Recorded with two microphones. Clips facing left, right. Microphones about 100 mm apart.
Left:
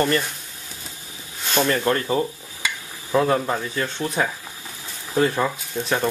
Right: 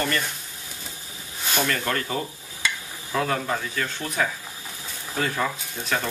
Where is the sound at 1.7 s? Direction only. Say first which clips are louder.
Left 6 dB; 25° left (ahead or behind).